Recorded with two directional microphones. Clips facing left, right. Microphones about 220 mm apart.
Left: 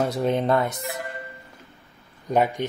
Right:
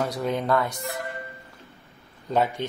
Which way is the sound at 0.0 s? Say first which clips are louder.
Left 4 dB; 25° left (ahead or behind).